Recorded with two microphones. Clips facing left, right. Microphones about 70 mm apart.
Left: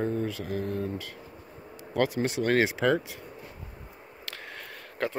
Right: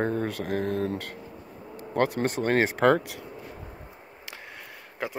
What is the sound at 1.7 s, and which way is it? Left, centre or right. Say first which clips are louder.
Speech: right 1 dB; right.